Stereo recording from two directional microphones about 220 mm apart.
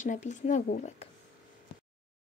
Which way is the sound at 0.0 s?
35° left (ahead or behind).